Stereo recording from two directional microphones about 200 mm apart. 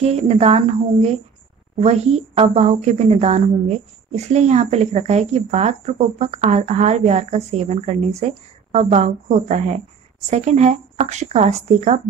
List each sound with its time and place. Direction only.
0.0 s a woman's voice: 35° right (ahead or behind)